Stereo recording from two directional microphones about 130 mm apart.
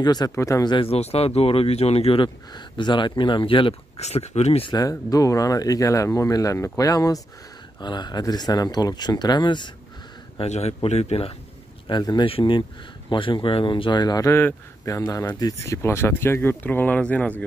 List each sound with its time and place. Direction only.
0.0 s speech: 30° left (ahead or behind)
0.7 s speech: 45° left (ahead or behind)
4.7 s speech: 25° left (ahead or behind)
10.4 s speech: 55° left (ahead or behind)
11.9 s speech: 35° left (ahead or behind); by 17.4 s 10° left (ahead or behind)